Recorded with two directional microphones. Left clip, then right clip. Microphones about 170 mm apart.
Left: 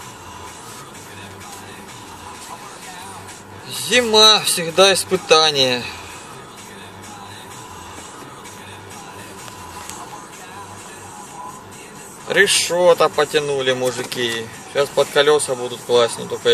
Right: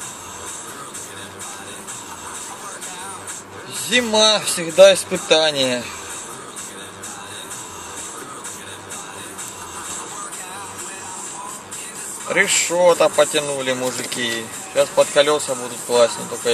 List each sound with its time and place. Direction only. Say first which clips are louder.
3.9 s speech: left 4 dB; 20° left (ahead or behind)
12.3 s speech: left 2 dB; 20° left (ahead or behind)